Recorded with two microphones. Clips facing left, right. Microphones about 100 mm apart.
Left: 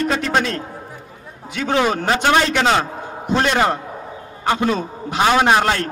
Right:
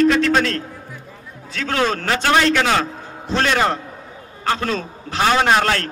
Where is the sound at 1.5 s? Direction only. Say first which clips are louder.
Left 2 dB; 15° left (ahead or behind).